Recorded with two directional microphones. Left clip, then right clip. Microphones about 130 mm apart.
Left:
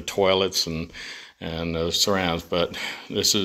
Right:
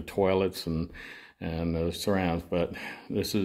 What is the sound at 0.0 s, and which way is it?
Speech, 25° right (ahead or behind).